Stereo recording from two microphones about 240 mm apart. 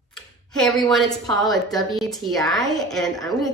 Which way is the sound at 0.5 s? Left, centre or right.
Centre.